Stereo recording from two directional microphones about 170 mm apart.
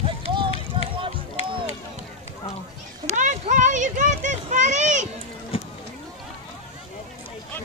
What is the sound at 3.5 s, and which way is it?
A child's voice, 45° right (ahead or behind).